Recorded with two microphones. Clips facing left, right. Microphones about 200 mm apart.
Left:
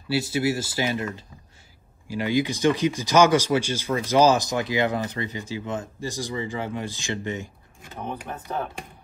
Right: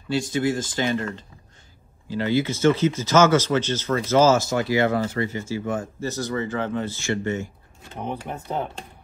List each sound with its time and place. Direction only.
0.1 s speech: 10° left (ahead or behind)
8.5 s speech: 20° right (ahead or behind)